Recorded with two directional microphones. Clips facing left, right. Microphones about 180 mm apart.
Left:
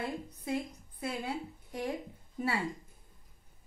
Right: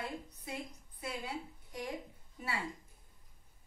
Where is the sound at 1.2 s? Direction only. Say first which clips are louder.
Left 5 dB; 55° left (ahead or behind).